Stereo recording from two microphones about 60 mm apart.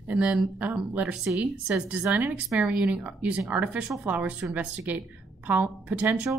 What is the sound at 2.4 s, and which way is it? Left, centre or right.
Speech, centre.